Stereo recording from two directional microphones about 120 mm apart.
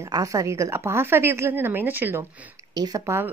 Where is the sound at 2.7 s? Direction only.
30° right (ahead or behind).